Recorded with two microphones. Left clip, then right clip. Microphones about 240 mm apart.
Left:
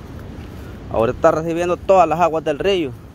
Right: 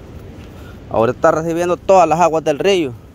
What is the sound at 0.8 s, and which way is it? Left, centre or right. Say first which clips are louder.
Speech: right 2 dB; right.